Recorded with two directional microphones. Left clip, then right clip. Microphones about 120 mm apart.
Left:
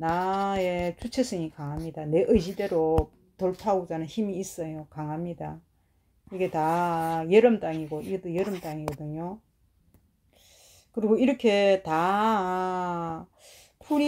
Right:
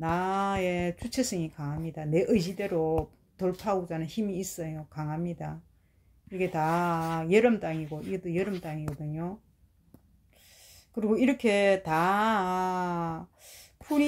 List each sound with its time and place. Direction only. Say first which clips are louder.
0.0 s speech: left 2 dB; 20° left (ahead or behind)
10.4 s speech: right 1 dB; 25° left (ahead or behind)